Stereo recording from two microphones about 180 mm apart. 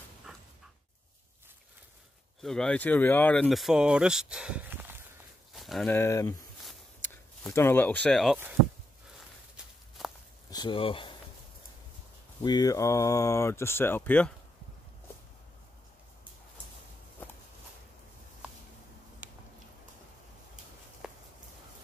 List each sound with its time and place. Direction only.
0.3 s dog: centre (ahead or behind)
2.4 s speech: 5° left (ahead or behind)
5.5 s walk: centre (ahead or behind)
5.9 s speech: 15° left (ahead or behind)
7.4 s speech: 10° left (ahead or behind)
10.5 s speech: 25° left (ahead or behind)
12.4 s speech: 20° left (ahead or behind)
19.2 s a sound: 10° right (ahead or behind)
21.0 s walk: 5° right (ahead or behind)